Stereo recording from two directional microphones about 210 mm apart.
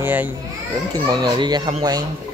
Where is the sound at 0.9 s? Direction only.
20° right (ahead or behind).